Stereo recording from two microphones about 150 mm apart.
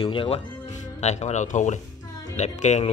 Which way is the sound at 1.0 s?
50° left (ahead or behind).